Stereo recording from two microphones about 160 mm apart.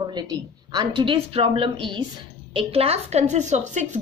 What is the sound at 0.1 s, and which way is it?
A woman's voice, 25° right (ahead or behind).